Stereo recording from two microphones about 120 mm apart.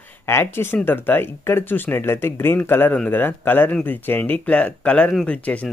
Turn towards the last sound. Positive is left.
turn(degrees=10)  # may be behind; listen again after turning